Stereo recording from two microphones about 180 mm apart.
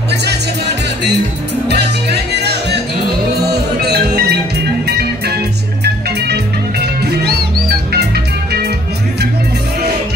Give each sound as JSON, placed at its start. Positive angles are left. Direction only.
{"t": 0.1, "sound": "music", "side_deg": -65}
{"t": 1.7, "sound": "music", "side_deg": -65}
{"t": 3.8, "sound": "music", "side_deg": -65}